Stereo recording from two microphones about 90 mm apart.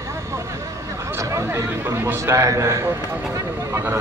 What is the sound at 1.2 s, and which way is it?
A man's voice, 35° right (ahead or behind).